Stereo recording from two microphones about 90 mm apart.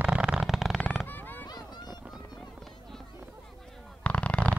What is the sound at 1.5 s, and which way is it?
Vehicle, 50° left (ahead or behind).